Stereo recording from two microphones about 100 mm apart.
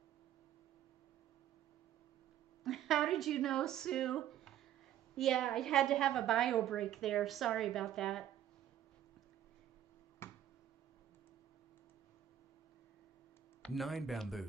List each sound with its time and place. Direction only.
2.6 s a woman's voice: centre (ahead or behind)
10.2 s finger snapping: 25° left (ahead or behind)
13.6 s a woman's voice: centre (ahead or behind)